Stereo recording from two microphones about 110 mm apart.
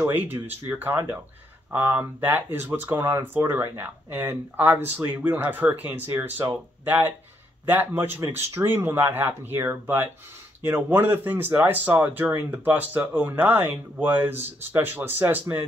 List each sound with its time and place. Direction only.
0.0 s speech: 15° right (ahead or behind)